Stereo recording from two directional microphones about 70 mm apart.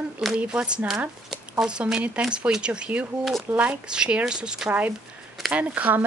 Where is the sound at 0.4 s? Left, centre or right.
Centre.